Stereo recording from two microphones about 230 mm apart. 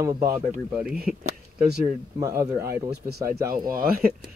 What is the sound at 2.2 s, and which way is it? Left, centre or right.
Speech, centre.